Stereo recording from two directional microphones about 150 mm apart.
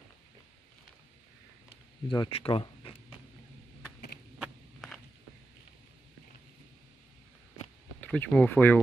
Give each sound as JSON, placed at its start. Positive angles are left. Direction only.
{"t": 2.0, "sound": "speech", "side_deg": 30}
{"t": 4.4, "sound": "walk", "side_deg": 0}
{"t": 8.0, "sound": "speech", "side_deg": 10}